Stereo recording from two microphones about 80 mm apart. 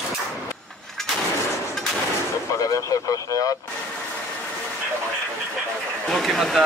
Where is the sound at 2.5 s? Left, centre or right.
Left.